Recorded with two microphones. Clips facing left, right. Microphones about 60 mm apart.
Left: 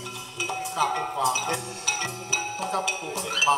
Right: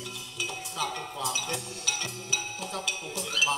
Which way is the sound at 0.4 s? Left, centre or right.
Left.